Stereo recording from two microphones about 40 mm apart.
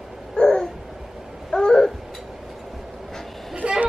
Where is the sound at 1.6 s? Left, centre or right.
Centre.